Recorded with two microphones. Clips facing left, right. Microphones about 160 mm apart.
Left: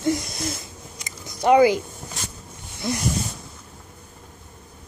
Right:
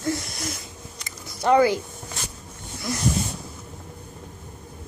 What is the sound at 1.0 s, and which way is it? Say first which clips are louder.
Biting: left 3 dB; 15° left (ahead or behind).